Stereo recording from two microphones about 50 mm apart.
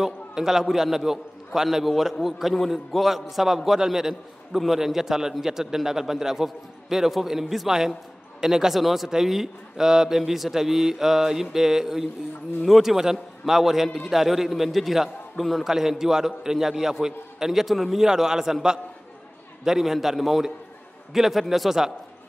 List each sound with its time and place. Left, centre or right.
0.0 s a man's voice: centre